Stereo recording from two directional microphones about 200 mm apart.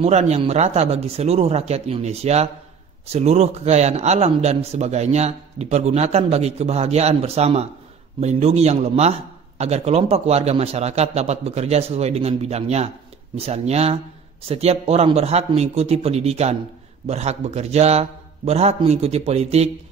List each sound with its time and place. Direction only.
0.0 s a man's voice: 35° right (ahead or behind)